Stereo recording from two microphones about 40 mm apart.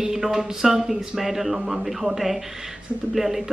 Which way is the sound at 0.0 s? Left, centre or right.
Centre.